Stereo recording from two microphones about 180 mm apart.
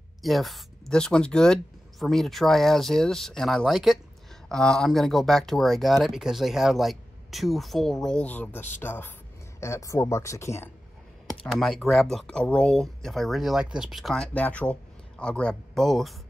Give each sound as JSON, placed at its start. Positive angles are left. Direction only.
{"t": 0.2, "sound": "speech", "side_deg": 0}
{"t": 11.4, "sound": "speech", "side_deg": 0}